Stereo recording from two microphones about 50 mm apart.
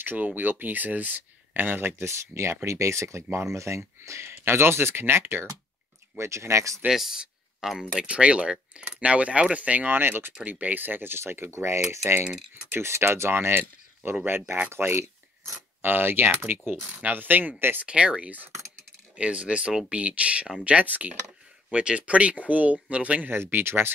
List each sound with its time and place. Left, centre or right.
0.0 s speech: right
2.6 s speech: right
6.1 s speech: right
6.9 s speech: centre
8.1 s speech: right
9.8 s speech: right
10.4 s speech: right
11.5 s speech: right
12.3 s speech: centre
12.7 s speech: right
14.7 s a sound: right
15.9 s speech: right
17.7 s speech: right
23.3 s speech: right